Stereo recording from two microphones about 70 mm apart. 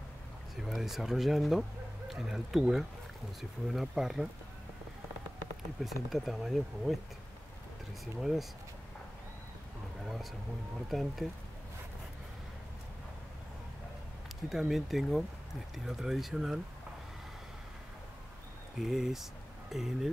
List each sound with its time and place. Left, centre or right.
0.6 s speech: centre
5.9 s speech: centre
8.0 s speech: centre
10.9 s speech: centre
14.5 s speech: centre
18.8 s speech: centre